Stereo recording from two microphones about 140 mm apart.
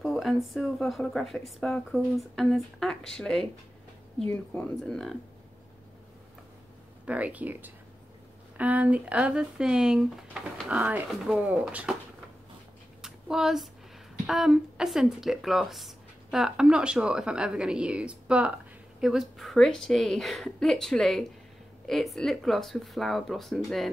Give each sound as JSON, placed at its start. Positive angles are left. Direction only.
{"t": 0.0, "sound": "speech", "side_deg": 0}
{"t": 7.1, "sound": "speech", "side_deg": -10}
{"t": 13.0, "sound": "a sound", "side_deg": -5}
{"t": 14.2, "sound": "speech", "side_deg": 0}